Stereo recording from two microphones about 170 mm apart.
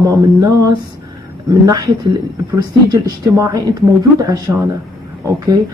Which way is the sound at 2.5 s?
20° right (ahead or behind).